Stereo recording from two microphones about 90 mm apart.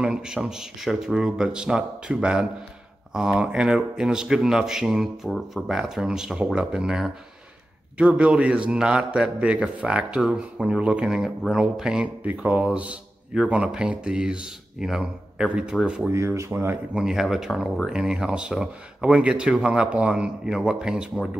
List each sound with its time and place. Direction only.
0.0 s speech: 10° right (ahead or behind)
16.1 s speech: 30° right (ahead or behind)
16.9 s speech: 5° right (ahead or behind)